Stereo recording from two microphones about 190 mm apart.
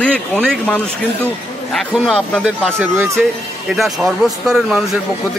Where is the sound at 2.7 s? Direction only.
10° right (ahead or behind).